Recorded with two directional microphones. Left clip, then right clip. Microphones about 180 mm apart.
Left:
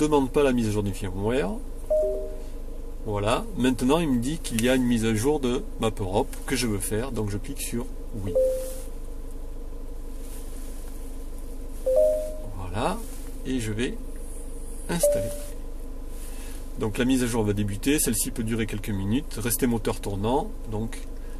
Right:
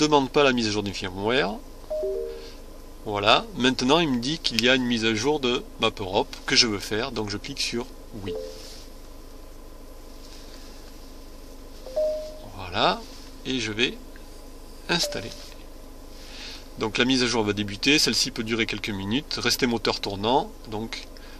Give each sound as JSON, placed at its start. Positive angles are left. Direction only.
{"t": 0.0, "sound": "speech", "side_deg": -20}
{"t": 3.1, "sound": "a man's voice", "side_deg": -20}
{"t": 12.6, "sound": "a sound", "side_deg": -20}
{"t": 14.9, "sound": "a man's voice", "side_deg": -15}
{"t": 16.7, "sound": "speech", "side_deg": -20}